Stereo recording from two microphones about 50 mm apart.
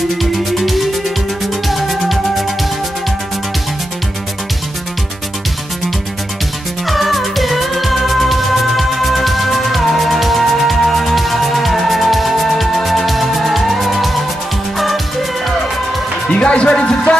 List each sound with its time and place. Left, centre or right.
0.2 s music: centre
6.9 s music: centre
16.3 s music: left